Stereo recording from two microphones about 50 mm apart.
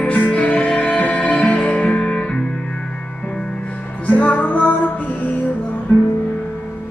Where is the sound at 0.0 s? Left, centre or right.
Left.